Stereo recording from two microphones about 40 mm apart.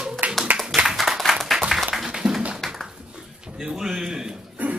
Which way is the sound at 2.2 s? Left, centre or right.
Right.